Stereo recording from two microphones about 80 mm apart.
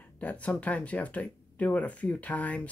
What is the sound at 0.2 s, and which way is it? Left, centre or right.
Speech, centre.